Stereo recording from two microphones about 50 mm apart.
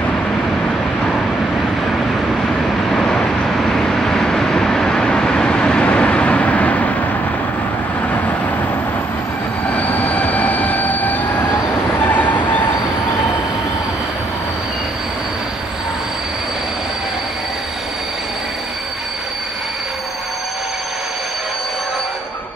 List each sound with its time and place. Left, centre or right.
3.0 s vehicle: centre; by 6.9 s left
9.7 s train: left